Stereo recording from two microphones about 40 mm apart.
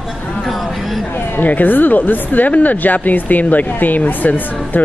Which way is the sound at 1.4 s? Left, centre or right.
Left.